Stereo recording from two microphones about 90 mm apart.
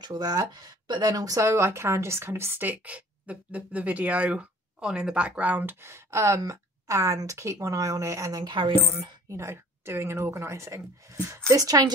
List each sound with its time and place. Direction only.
0.0 s speech: 50° right (ahead or behind)
1.1 s speech: 40° right (ahead or behind)
8.5 s speech: 80° right
9.3 s speech: 30° right (ahead or behind)